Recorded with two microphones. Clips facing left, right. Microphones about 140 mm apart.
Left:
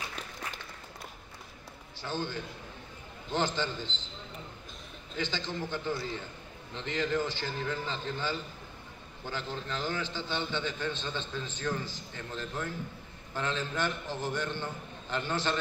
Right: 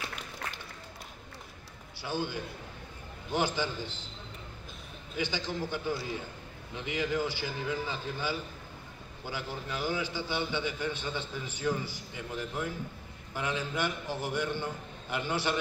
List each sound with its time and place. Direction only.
2.0 s a man's voice: 10° right (ahead or behind)
5.1 s a man's voice: 10° right (ahead or behind)